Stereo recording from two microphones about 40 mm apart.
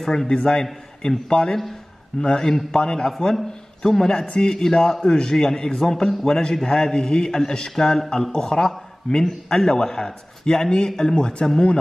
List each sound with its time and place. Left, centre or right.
0.0 s a man's voice: centre
0.3 s a man's voice: left